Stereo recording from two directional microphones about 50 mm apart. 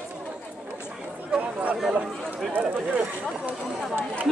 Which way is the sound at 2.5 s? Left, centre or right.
Right.